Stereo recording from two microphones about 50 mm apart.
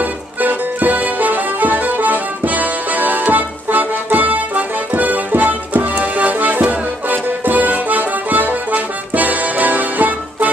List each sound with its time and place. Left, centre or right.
0.0 s music: right